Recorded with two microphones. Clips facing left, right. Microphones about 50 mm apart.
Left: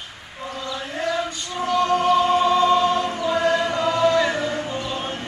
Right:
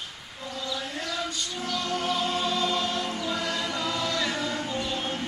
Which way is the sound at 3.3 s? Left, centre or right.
Left.